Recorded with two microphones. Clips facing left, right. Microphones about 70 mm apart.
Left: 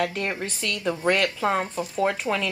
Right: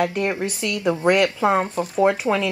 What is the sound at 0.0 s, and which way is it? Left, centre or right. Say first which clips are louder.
Speech: right 5 dB; centre.